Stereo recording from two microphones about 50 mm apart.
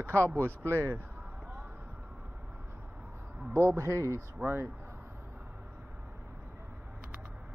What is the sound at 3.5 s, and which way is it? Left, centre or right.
Speech, right.